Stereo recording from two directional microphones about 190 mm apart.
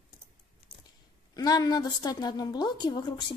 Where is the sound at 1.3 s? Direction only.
20° left (ahead or behind).